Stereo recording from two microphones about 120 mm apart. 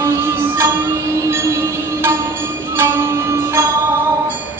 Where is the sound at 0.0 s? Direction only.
20° right (ahead or behind).